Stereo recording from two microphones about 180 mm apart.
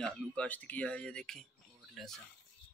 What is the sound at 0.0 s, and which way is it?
Speech, 5° left (ahead or behind).